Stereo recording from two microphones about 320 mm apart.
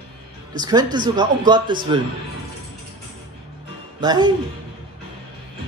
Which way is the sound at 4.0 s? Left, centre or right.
Centre.